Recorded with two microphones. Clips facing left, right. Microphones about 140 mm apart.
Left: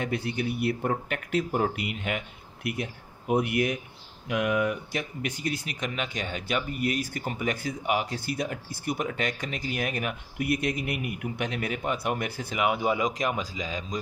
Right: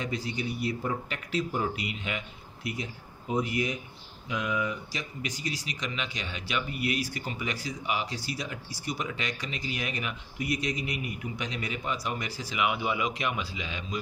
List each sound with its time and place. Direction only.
0.0 s speech: 60° left (ahead or behind); by 13.9 s 40° left (ahead or behind)